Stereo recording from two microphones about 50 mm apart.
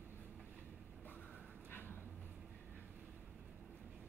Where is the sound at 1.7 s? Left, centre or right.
Left.